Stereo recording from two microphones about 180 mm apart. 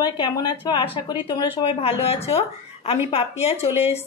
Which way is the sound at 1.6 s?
35° left (ahead or behind).